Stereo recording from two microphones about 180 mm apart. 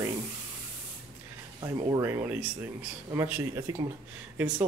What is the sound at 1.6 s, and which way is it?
Speech, 20° right (ahead or behind).